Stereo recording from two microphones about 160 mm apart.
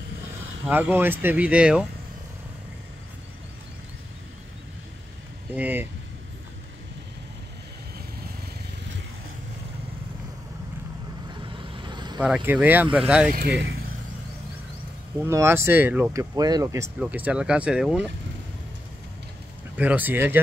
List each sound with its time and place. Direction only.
0.7 s speech: 10° right (ahead or behind)
5.5 s speech: 10° right (ahead or behind)
11.4 s vehicle: 30° right (ahead or behind)
12.2 s speech: 5° right (ahead or behind)
13.3 s speech: 80° right
15.1 s speech: 15° right (ahead or behind)
19.8 s speech: 10° right (ahead or behind)